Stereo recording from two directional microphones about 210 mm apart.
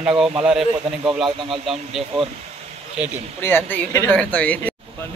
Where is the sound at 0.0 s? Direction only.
5° right (ahead or behind).